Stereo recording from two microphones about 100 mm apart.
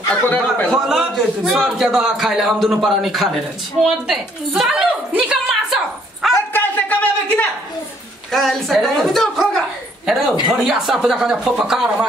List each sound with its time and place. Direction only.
0.1 s a man's voice: 15° left (ahead or behind)
0.7 s a man's voice: centre (ahead or behind)
6.5 s a sound: 15° left (ahead or behind)
8.3 s a man's voice: centre (ahead or behind)